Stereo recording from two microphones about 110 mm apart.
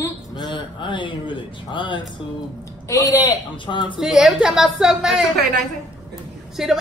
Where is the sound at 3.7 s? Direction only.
45° left (ahead or behind).